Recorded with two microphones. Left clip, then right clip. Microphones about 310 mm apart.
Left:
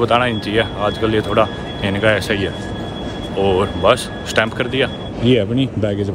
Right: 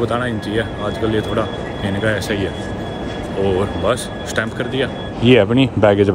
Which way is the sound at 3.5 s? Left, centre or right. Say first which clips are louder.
Left 4 dB; centre.